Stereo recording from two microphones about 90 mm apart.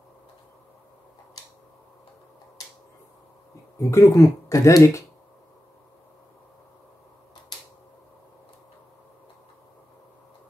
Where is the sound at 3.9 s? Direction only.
35° left (ahead or behind).